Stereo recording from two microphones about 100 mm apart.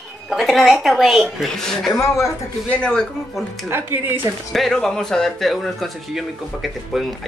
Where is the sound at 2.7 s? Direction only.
10° left (ahead or behind).